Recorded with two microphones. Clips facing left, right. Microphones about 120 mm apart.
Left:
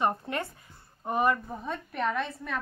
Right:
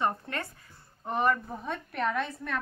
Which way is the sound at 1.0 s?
5° left (ahead or behind).